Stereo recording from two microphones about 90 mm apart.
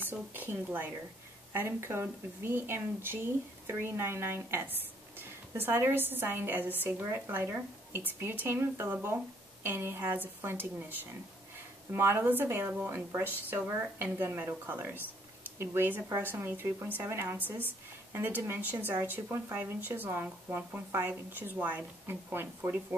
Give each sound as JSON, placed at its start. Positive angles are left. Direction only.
{"t": 0.0, "sound": "a woman's voice", "side_deg": -20}